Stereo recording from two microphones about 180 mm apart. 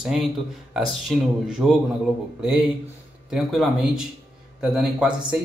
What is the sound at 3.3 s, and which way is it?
Speech, centre (ahead or behind).